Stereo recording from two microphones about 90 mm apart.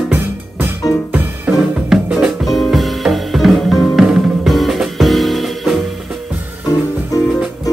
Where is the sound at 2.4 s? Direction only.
Centre (ahead or behind).